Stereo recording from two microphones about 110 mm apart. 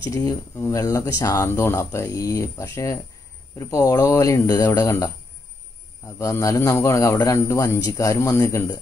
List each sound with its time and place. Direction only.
0.1 s speech: 30° left (ahead or behind)